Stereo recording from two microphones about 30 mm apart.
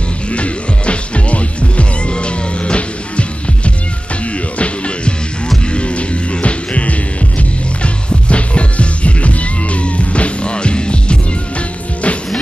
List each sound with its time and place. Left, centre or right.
0.3 s music: left